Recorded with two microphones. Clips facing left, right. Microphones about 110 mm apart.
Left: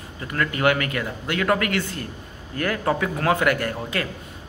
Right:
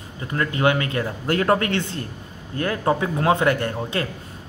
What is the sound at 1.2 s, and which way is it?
A man's voice, 35° right (ahead or behind).